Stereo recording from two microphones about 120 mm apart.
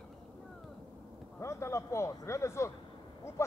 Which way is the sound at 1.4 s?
25° left (ahead or behind).